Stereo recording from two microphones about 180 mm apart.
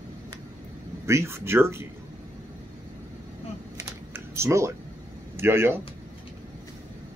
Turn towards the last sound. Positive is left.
turn(degrees=-15)  # may be behind; listen again after turning